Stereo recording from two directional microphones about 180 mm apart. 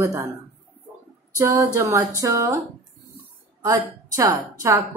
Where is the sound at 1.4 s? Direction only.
15° right (ahead or behind).